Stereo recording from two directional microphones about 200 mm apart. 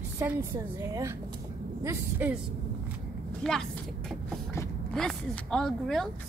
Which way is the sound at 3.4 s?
Centre (ahead or behind).